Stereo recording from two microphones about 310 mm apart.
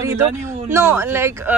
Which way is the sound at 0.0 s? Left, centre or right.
Centre.